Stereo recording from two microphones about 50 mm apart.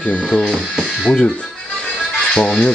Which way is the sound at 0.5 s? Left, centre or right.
Centre.